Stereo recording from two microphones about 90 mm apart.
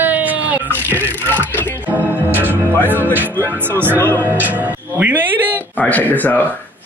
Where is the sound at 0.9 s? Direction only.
20° left (ahead or behind).